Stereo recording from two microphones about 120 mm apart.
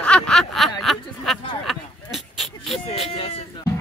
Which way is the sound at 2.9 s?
55° left (ahead or behind).